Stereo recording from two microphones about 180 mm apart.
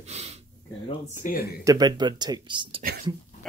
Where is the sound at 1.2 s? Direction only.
55° left (ahead or behind).